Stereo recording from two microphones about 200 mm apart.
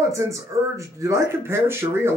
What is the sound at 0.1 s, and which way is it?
Speech, 15° right (ahead or behind).